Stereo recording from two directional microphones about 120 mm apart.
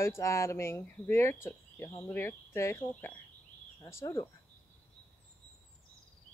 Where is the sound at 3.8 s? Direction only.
25° left (ahead or behind).